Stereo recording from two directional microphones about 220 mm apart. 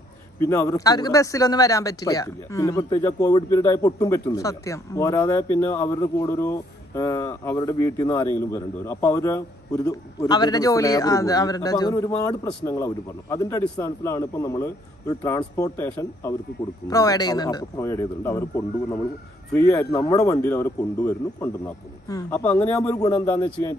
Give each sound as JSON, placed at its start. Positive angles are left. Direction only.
{"t": 0.4, "sound": "speech", "side_deg": 10}